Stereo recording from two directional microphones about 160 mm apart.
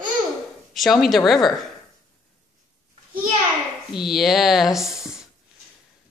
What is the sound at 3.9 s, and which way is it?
Speech, centre (ahead or behind).